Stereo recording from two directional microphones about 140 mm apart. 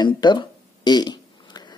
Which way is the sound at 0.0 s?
30° left (ahead or behind).